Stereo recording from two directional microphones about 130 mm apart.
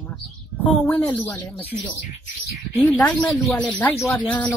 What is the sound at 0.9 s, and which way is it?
Speech, 15° left (ahead or behind).